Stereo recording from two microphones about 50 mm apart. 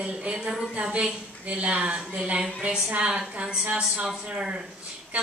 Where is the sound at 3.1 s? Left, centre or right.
Centre.